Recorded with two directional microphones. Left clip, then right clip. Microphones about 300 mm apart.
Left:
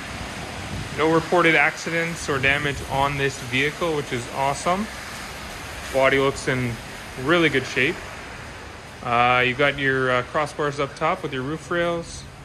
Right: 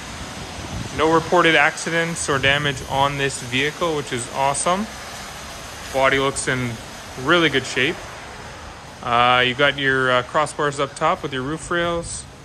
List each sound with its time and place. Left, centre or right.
0.9 s speech: centre
5.9 s speech: centre
9.0 s speech: centre